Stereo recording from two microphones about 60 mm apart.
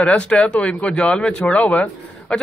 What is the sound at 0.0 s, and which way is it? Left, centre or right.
Speech, centre.